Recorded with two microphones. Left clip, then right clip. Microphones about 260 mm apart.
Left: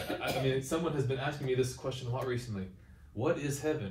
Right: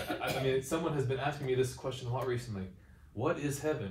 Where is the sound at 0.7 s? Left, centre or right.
Centre.